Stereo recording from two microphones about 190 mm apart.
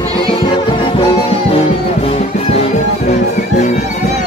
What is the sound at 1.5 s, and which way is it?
Music, 30° left (ahead or behind).